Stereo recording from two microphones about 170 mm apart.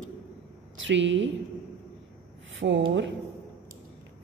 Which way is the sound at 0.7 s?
90° right.